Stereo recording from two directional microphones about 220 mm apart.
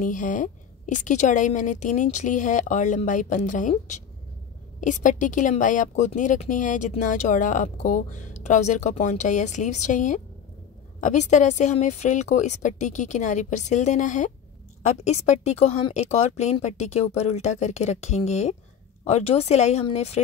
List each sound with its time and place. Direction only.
0.0 s speech: 35° left (ahead or behind)